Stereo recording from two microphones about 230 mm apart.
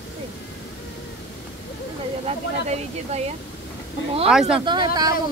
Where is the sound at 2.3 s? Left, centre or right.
Right.